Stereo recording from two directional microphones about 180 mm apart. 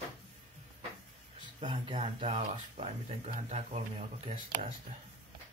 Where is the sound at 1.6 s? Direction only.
25° right (ahead or behind).